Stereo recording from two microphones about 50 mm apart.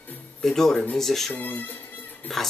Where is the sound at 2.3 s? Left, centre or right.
Centre.